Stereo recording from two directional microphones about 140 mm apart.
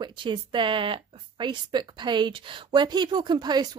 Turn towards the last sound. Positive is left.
turn(degrees=-30)  # may be behind; listen again after turning